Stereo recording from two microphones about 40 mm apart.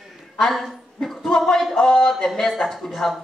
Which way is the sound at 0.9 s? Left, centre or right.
Centre.